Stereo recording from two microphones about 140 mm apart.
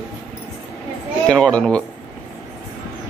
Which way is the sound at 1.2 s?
5° left (ahead or behind).